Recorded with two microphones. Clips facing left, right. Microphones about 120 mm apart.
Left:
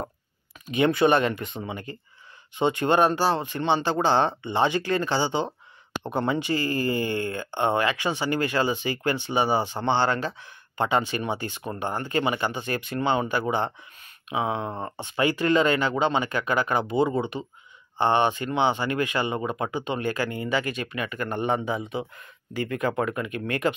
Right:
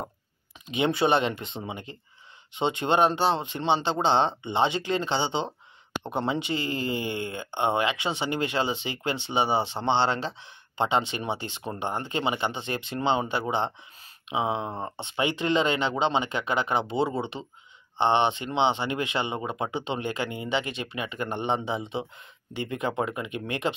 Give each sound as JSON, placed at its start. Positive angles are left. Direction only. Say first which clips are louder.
{"t": 0.7, "sound": "speech", "louder": "left 3 dB", "side_deg": -15}